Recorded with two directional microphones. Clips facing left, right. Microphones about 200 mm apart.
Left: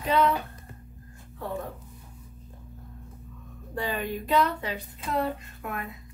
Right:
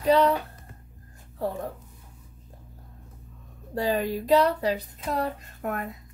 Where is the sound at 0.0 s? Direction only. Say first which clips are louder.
Right 4 dB; 35° right (ahead or behind).